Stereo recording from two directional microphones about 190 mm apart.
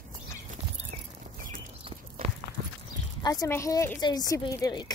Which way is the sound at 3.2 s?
20° left (ahead or behind).